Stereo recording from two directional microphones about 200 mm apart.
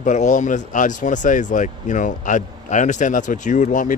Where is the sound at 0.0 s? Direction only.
40° left (ahead or behind).